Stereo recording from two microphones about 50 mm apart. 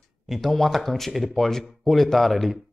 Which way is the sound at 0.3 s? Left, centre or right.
Centre.